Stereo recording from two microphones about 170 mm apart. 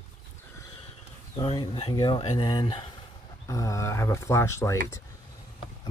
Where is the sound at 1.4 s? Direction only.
35° left (ahead or behind).